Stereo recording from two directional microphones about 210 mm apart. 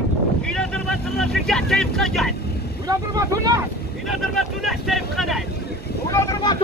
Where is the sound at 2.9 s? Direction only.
15° right (ahead or behind).